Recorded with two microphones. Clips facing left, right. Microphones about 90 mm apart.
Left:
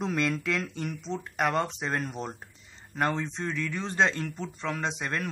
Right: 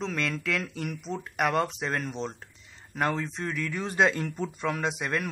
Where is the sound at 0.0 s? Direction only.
5° left (ahead or behind); by 4.9 s 15° right (ahead or behind).